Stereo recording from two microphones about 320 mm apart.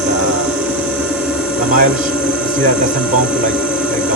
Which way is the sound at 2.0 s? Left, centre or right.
Centre.